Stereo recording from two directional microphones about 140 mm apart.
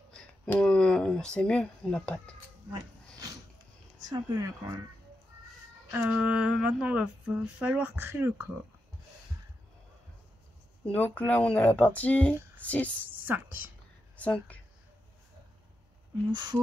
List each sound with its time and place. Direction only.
0.1 s speech: 5° left (ahead or behind)
4.1 s speech: 25° right (ahead or behind)
5.9 s speech: 10° right (ahead or behind)
11.1 s speech: 10° left (ahead or behind)
13.2 s a woman's voice: 15° right (ahead or behind)
14.1 s speech: 10° left (ahead or behind)
16.3 s a sound: 30° right (ahead or behind)